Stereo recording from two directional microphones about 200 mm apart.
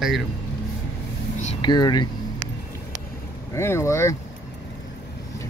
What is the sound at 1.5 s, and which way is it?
Speech, 20° left (ahead or behind).